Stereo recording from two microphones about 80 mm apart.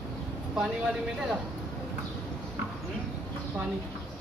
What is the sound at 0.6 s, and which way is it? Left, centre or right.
Speech, centre.